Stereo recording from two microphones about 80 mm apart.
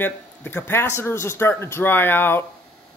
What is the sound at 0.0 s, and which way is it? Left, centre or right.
Speech, left.